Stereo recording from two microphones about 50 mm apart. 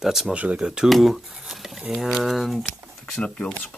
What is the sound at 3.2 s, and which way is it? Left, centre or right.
Speech, centre.